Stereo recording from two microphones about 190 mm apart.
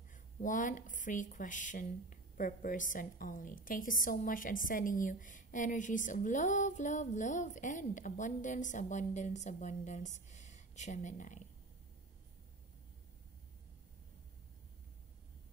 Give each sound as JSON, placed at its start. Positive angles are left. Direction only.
{"t": 0.1, "sound": "speech", "side_deg": 45}